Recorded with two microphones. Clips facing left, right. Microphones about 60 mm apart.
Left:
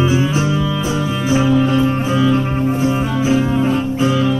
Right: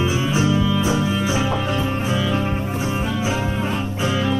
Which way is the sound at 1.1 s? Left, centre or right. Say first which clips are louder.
Left 6 dB; centre.